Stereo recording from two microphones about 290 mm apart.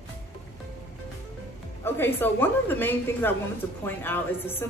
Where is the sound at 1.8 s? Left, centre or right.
Centre.